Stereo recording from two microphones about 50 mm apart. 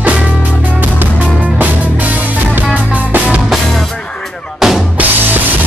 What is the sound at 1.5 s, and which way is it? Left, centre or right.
Music, right.